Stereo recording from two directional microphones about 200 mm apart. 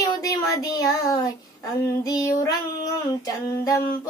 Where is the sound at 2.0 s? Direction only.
15° left (ahead or behind).